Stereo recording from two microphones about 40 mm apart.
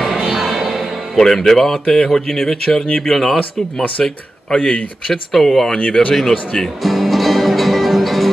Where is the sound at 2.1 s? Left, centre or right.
Centre.